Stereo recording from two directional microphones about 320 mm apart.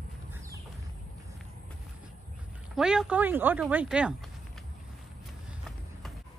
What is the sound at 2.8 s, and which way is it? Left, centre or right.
Speech, centre.